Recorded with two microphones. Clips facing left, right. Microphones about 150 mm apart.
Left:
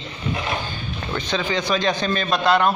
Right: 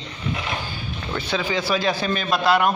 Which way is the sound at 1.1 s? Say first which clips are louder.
Left 1 dB; 10° right (ahead or behind).